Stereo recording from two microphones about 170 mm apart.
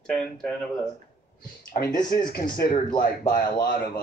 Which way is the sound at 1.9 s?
55° left (ahead or behind).